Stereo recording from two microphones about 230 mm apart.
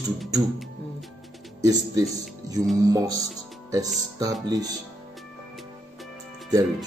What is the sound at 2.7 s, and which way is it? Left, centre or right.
A man's voice, centre.